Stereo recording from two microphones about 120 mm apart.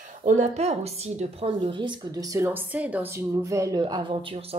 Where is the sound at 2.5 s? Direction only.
10° right (ahead or behind); by 3.8 s 30° right (ahead or behind).